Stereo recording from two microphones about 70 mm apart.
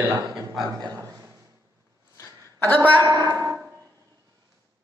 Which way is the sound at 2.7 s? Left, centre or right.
Left.